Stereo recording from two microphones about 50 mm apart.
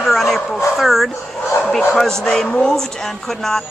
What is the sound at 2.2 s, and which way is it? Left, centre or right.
Speech, centre.